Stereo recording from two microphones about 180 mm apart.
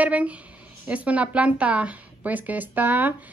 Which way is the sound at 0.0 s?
10° right (ahead or behind).